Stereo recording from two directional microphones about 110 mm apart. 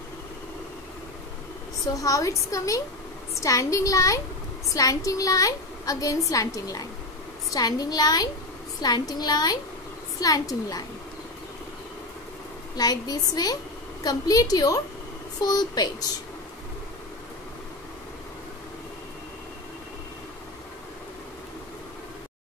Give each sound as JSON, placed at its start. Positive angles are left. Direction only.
{"t": 2.0, "sound": "a woman's voice", "side_deg": 30}
{"t": 12.7, "sound": "a woman's voice", "side_deg": 35}